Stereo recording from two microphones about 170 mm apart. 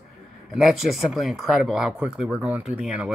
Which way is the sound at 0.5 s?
Centre (ahead or behind).